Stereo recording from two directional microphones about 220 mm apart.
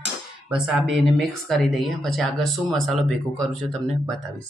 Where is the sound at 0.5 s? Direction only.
Centre (ahead or behind).